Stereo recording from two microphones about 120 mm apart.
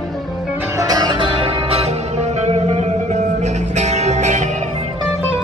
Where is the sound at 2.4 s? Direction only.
65° right (ahead or behind).